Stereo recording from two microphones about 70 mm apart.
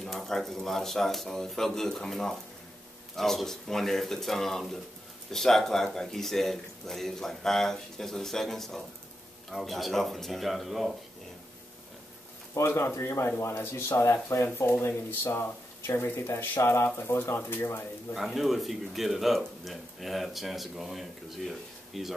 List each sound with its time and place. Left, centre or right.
0.0 s a man's voice: centre
12.5 s speech: left
18.1 s a man's voice: centre